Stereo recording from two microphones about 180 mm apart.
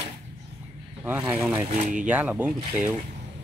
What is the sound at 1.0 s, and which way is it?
Speech, 10° right (ahead or behind).